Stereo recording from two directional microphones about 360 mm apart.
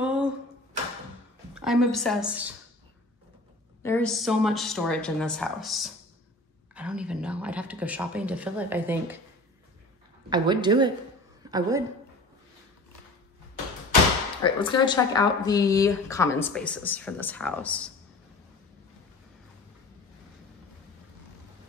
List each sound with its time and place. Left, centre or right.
0.0 s a sound: centre
1.5 s speech: centre
3.8 s speech: centre
10.3 s a woman's voice: centre
11.4 s a sound: centre
14.4 s speech: centre